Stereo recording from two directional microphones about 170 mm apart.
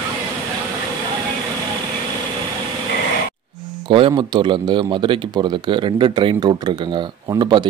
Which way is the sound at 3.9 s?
30° right (ahead or behind).